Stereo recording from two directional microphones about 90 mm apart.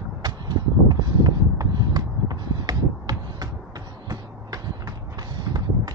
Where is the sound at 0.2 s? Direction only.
50° right (ahead or behind).